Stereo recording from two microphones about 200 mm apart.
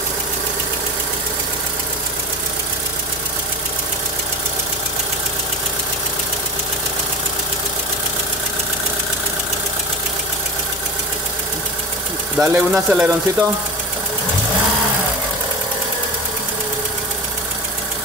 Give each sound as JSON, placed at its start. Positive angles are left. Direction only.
{"t": 12.4, "sound": "speech", "side_deg": -5}